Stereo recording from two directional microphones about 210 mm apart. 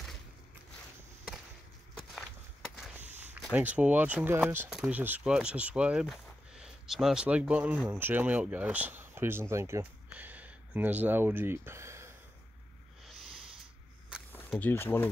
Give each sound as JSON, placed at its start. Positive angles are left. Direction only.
{"t": 3.1, "sound": "a sound", "side_deg": -35}
{"t": 3.3, "sound": "speech", "side_deg": -5}
{"t": 14.5, "sound": "speech", "side_deg": 10}